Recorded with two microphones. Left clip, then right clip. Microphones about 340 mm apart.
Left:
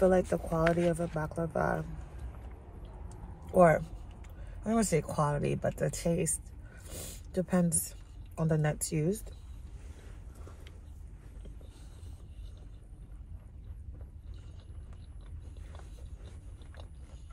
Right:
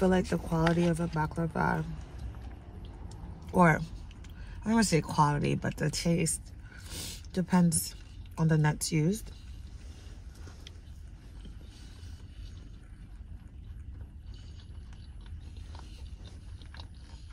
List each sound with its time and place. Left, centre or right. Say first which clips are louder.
0.0 s speech: left 2 dB; centre
3.5 s speech: left 2 dB; centre
6.9 s a sound: right 3 dB; centre
8.4 s speech: right 1 dB; centre